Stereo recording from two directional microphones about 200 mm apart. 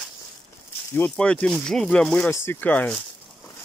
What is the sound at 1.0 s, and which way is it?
Speech, 5° left (ahead or behind).